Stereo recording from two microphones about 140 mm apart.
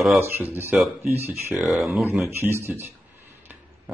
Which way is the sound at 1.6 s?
Centre (ahead or behind).